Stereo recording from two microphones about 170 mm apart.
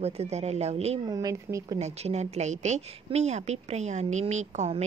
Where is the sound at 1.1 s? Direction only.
20° right (ahead or behind).